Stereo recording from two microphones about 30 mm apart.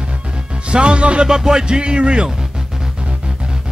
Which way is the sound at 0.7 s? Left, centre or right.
Right.